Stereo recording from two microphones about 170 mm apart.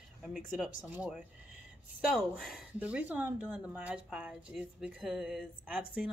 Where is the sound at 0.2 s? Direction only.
Centre (ahead or behind).